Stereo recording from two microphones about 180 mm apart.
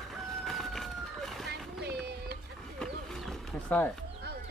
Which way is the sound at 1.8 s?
65° right (ahead or behind).